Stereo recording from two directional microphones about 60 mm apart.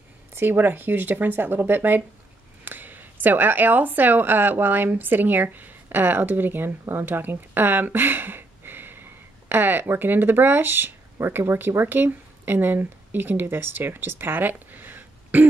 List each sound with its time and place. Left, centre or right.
0.3 s a woman's voice: right